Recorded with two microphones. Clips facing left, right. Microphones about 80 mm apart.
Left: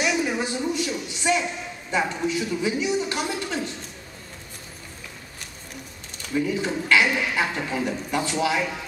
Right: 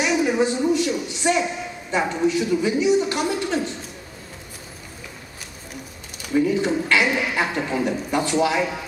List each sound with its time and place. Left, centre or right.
0.0 s a sound: centre
2.0 s a man's voice: centre
6.4 s a man's voice: centre